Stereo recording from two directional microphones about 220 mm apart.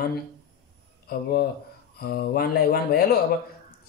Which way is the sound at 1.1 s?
45° left (ahead or behind).